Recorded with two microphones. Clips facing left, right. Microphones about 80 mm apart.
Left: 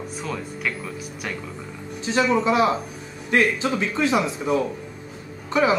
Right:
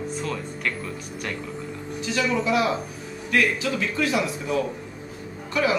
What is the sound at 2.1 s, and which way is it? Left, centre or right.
A man's voice, left.